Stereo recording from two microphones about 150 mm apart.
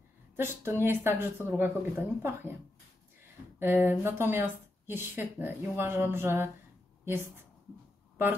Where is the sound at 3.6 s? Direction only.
15° right (ahead or behind).